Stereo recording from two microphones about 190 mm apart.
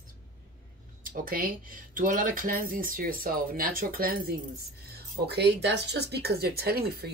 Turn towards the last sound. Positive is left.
turn(degrees=-55)  # may be behind; listen again after turning